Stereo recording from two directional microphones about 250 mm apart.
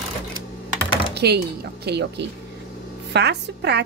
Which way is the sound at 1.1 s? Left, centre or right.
Right.